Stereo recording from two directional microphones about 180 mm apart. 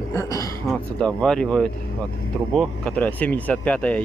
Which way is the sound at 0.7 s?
5° left (ahead or behind).